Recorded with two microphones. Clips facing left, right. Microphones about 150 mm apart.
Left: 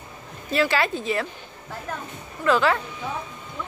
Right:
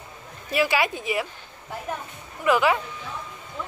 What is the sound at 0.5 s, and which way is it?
A woman's voice, 15° right (ahead or behind).